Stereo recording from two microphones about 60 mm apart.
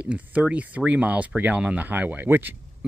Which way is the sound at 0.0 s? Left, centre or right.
Right.